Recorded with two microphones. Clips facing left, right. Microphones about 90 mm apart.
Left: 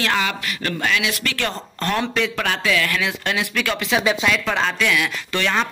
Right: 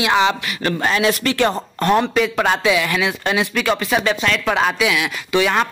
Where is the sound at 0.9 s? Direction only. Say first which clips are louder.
Right 5 dB; 35° right (ahead or behind).